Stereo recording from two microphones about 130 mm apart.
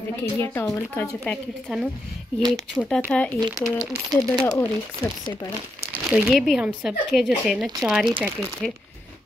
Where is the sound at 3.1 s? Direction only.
10° left (ahead or behind).